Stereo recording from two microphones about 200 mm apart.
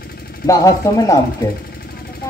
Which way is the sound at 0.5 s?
15° left (ahead or behind).